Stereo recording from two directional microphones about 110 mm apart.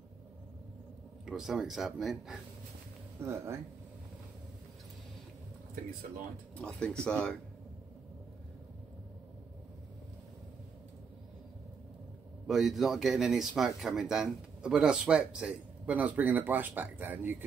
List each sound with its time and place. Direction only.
1.2 s speech: 5° right (ahead or behind)
3.2 s speech: 25° right (ahead or behind)
6.5 s speech: 10° left (ahead or behind)
12.4 s speech: centre (ahead or behind)